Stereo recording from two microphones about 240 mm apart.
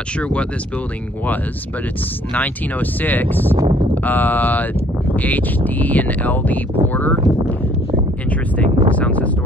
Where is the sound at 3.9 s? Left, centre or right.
Centre.